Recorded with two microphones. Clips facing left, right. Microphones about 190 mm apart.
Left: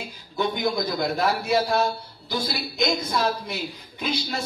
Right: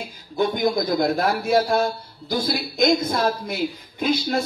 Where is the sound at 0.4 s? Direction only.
50° right (ahead or behind).